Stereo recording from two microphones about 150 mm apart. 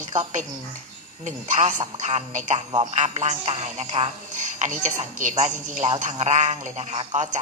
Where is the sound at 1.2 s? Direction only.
55° right (ahead or behind).